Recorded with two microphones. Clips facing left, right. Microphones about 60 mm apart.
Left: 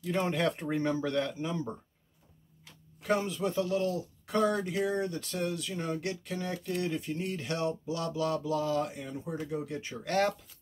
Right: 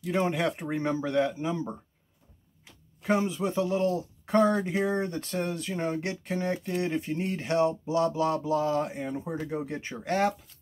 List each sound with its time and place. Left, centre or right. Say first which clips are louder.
0.0 s speech: right 2 dB; centre
3.0 s speech: right 3 dB; centre; by 10.0 s right
10.0 s speech: right 2 dB; centre